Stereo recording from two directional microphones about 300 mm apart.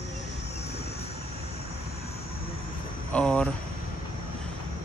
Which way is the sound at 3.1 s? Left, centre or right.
Centre.